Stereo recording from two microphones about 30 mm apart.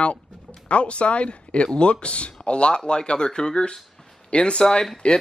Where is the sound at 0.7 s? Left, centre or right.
Left.